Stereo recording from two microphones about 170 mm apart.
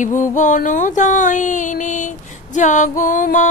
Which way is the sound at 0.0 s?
50° left (ahead or behind).